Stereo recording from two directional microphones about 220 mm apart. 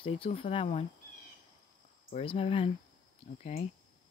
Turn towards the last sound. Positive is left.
turn(degrees=30)  # may be behind; listen again after turning